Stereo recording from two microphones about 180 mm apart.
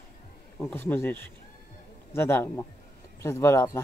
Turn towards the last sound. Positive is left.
turn(degrees=15)  # may be behind; listen again after turning